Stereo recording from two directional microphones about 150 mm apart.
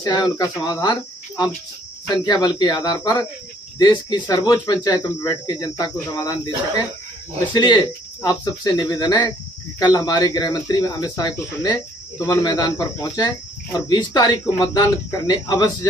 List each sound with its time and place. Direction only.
0.0 s speech: 25° left (ahead or behind)